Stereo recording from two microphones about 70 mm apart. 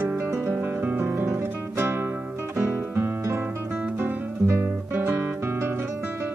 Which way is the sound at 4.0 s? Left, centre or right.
Right.